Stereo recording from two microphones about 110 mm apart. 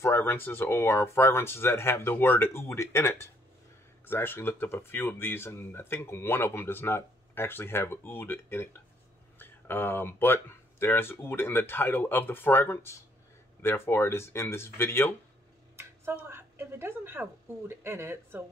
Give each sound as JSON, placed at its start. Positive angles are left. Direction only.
{"t": 0.0, "sound": "speech", "side_deg": 20}
{"t": 15.7, "sound": "a woman's voice", "side_deg": -25}